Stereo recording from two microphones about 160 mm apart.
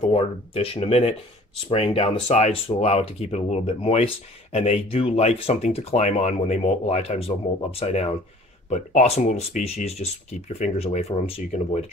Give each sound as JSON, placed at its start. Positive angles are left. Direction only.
{"t": 0.1, "sound": "speech", "side_deg": 35}